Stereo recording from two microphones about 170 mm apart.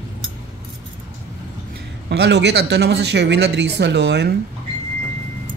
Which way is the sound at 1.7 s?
80° right.